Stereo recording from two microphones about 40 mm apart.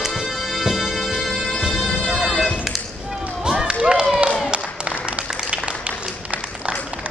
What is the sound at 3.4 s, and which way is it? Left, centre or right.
Run, centre.